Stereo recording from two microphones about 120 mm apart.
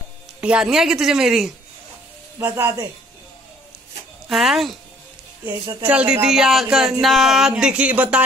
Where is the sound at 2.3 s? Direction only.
20° right (ahead or behind).